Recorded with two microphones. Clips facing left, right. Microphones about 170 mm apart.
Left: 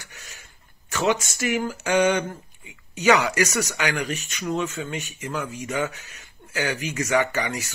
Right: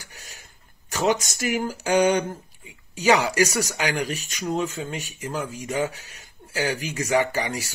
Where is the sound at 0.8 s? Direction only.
40° right (ahead or behind).